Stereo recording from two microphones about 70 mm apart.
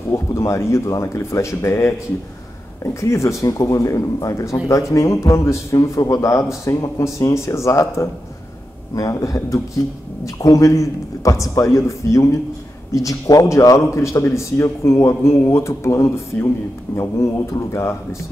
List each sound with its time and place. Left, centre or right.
0.1 s a man's voice: left